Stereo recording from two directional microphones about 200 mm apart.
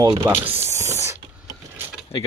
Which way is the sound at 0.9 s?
15° right (ahead or behind).